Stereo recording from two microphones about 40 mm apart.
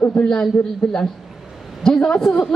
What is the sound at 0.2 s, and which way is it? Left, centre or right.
A man's voice, left.